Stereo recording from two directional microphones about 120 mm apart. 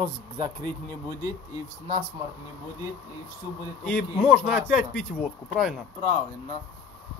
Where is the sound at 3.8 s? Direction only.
10° left (ahead or behind).